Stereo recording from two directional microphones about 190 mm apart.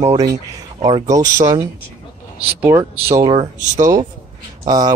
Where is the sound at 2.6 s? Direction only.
15° right (ahead or behind).